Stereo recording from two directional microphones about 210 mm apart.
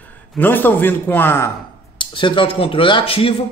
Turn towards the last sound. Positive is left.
turn(degrees=25)  # may be behind; listen again after turning